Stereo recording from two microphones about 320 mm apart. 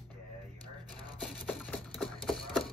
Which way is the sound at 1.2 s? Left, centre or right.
Centre.